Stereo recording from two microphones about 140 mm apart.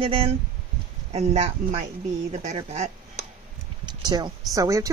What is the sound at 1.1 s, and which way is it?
Speech, 50° right (ahead or behind).